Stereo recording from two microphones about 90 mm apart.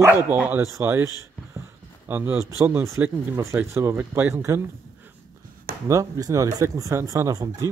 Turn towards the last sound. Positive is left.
turn(degrees=-40)  # may be behind; listen again after turning